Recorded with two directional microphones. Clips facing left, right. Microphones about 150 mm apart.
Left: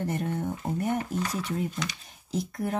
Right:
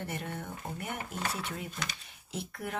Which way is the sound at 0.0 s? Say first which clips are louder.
Left 9 dB; 40° left (ahead or behind).